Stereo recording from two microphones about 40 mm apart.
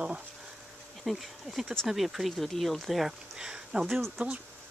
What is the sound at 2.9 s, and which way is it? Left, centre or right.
Speech, centre.